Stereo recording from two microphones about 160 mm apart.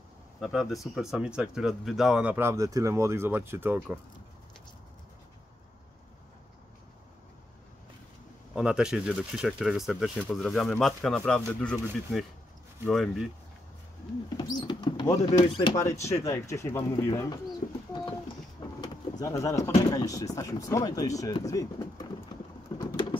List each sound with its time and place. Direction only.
0.4 s speech: centre (ahead or behind)
8.5 s speech: 5° right (ahead or behind)
14.3 s speech: 25° left (ahead or behind)
17.6 s speech: 50° left (ahead or behind)
18.8 s a sound: 20° left (ahead or behind)
19.9 s speech: 20° left (ahead or behind)
22.7 s bird: 15° left (ahead or behind)